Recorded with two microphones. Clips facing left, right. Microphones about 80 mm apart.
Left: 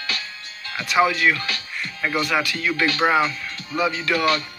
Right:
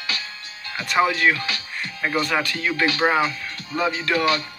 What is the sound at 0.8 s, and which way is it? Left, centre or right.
Speech, right.